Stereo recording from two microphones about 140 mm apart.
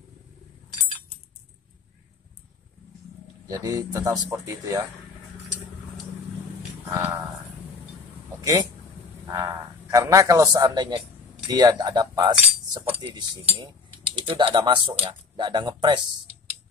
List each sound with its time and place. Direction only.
3.4 s a man's voice: 25° right (ahead or behind)
6.9 s livestock: 15° right (ahead or behind)
9.2 s frog: 20° right (ahead or behind)
9.8 s a man's voice: 25° right (ahead or behind)
13.0 s speech: 40° right (ahead or behind)